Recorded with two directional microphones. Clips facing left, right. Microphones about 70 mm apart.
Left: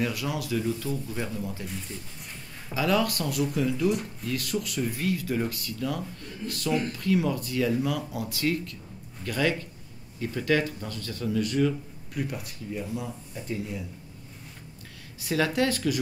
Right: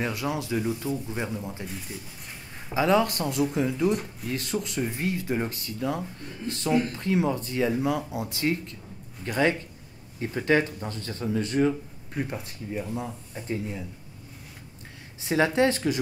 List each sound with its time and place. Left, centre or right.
0.0 s speech: right
2.7 s speech: right
15.1 s speech: right